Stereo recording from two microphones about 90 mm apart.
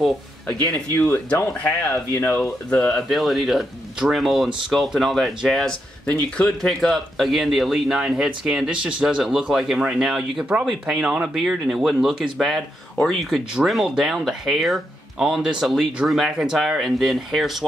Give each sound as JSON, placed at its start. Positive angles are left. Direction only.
{"t": 0.7, "sound": "speech", "side_deg": 20}
{"t": 2.4, "sound": "speech", "side_deg": 10}